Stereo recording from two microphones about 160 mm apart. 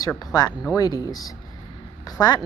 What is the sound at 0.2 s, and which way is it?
A woman's voice, 25° left (ahead or behind).